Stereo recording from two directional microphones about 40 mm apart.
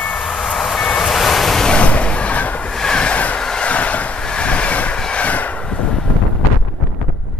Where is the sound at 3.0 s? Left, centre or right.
Left.